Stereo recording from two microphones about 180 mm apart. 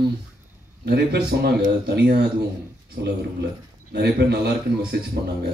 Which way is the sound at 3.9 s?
65° right (ahead or behind).